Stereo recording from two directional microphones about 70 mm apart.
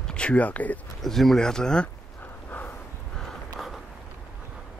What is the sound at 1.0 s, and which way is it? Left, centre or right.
Speech, centre.